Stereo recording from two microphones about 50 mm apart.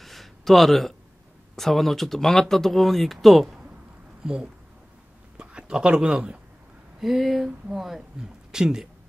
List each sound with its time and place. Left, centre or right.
0.0 s a sound: centre
1.6 s speech: centre
4.2 s speech: centre
7.0 s speech: centre